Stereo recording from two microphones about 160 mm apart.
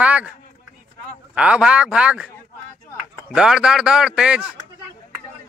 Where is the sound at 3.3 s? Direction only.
5° right (ahead or behind).